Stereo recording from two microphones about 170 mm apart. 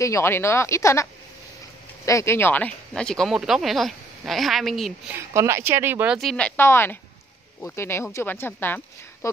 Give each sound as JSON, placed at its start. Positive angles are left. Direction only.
{"t": 0.0, "sound": "speech", "side_deg": 15}
{"t": 2.0, "sound": "speech", "side_deg": 15}
{"t": 5.1, "sound": "speech", "side_deg": -15}
{"t": 6.1, "sound": "speech", "side_deg": 5}